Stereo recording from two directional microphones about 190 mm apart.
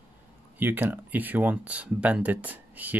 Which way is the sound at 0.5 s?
10° right (ahead or behind).